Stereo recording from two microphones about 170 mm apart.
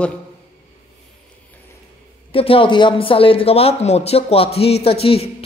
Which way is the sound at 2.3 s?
30° left (ahead or behind).